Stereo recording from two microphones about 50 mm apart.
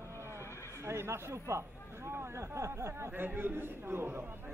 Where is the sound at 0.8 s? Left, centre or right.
Right.